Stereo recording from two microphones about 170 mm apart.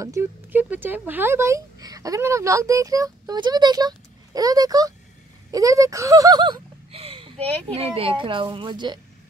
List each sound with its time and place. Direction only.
0.0 s speech: 15° right (ahead or behind)
5.5 s a sound: 20° right (ahead or behind)
7.7 s speech: 35° right (ahead or behind)